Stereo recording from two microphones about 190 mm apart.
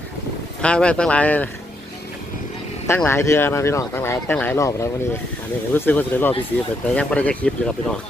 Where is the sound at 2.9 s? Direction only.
15° left (ahead or behind).